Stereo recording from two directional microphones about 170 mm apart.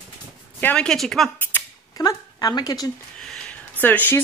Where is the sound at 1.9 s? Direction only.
20° left (ahead or behind).